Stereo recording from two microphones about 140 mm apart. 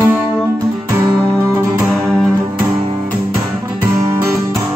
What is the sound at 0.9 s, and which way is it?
Music, 25° right (ahead or behind).